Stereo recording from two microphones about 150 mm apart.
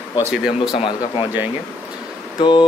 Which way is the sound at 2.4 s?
30° left (ahead or behind).